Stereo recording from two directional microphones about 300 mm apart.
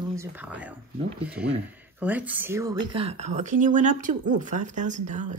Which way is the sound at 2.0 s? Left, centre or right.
Centre.